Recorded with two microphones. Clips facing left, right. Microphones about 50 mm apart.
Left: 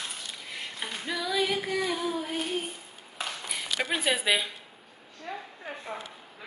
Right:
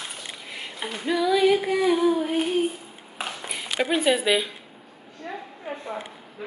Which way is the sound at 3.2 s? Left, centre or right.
Right.